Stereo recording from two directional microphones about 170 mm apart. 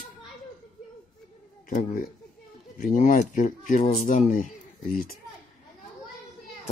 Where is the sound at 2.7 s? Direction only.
50° left (ahead or behind).